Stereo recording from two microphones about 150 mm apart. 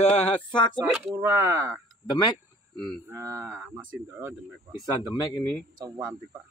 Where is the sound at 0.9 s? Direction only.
15° right (ahead or behind).